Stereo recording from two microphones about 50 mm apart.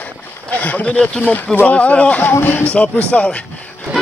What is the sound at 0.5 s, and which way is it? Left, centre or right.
Speech, left.